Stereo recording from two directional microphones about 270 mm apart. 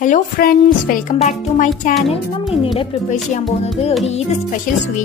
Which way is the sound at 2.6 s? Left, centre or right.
Centre.